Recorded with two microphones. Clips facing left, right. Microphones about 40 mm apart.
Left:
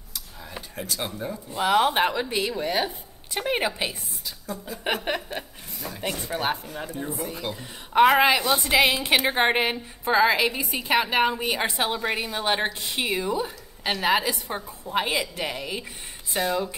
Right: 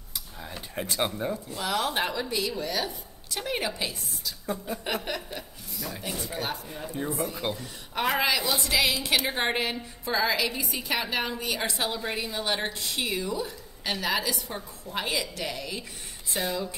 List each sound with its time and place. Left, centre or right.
0.7 s speech: right
1.5 s a woman's voice: left